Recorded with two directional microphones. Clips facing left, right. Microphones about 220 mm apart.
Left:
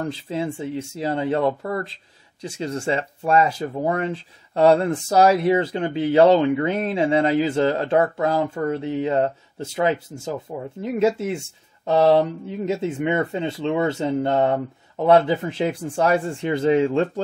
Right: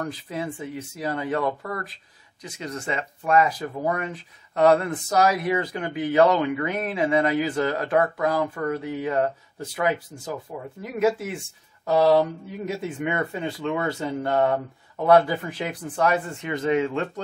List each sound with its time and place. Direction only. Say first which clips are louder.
0.0 s speech: left 4 dB; 25° left (ahead or behind)